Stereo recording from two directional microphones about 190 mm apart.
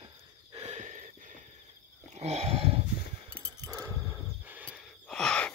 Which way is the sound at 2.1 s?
35° right (ahead or behind).